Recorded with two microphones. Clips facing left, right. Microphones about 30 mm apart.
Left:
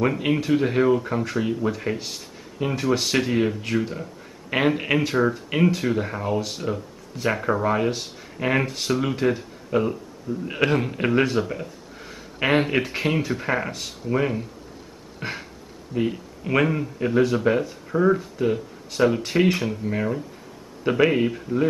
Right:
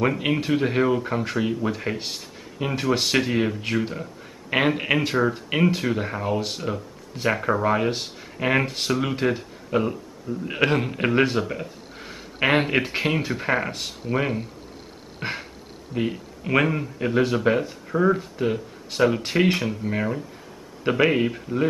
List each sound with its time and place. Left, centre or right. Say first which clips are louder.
0.0 s speech: even; centre
3.6 s speech: even; centre
15.1 s a sound: right 1 dB; centre
15.9 s speech: left 1 dB; centre